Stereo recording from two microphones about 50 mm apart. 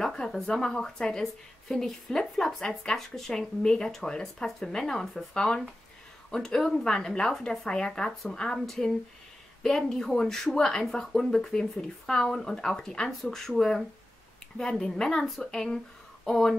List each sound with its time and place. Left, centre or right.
0.0 s speech: centre